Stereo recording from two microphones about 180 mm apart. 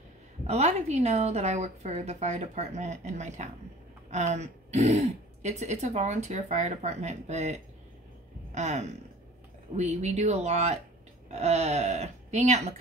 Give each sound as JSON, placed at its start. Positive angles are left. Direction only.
{"t": 0.5, "sound": "speech", "side_deg": -35}
{"t": 8.5, "sound": "a sound", "side_deg": -40}
{"t": 9.8, "sound": "speech", "side_deg": -40}